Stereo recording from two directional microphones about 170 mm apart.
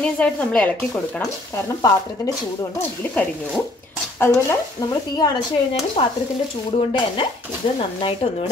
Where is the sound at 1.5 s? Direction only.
20° left (ahead or behind).